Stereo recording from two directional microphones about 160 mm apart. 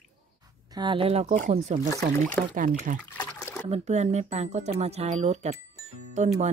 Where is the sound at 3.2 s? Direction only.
15° left (ahead or behind).